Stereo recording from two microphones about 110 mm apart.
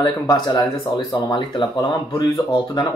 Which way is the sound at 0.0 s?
40° left (ahead or behind).